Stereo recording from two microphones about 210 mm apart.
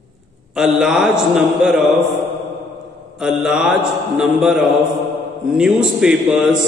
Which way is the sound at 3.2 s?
5° right (ahead or behind).